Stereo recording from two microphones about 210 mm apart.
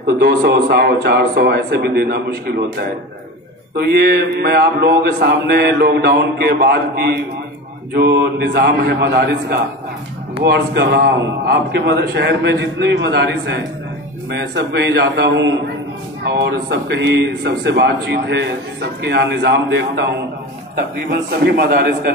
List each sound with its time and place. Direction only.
0.0 s speech: 45° right (ahead or behind)
21.5 s speech: 50° right (ahead or behind)